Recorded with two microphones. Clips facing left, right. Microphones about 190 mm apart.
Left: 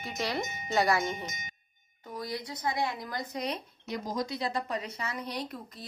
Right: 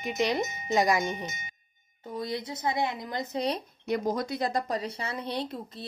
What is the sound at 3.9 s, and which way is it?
Speech, 60° right (ahead or behind).